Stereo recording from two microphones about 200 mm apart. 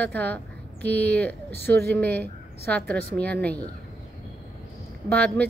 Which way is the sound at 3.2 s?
5° left (ahead or behind).